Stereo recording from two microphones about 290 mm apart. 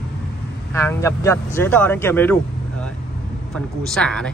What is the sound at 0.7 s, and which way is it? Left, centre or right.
Speech, centre.